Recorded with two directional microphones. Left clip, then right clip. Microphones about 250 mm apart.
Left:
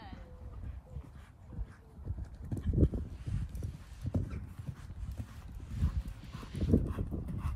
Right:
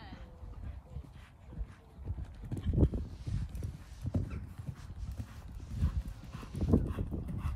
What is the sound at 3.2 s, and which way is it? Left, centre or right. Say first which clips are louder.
Clip-clop: even; centre.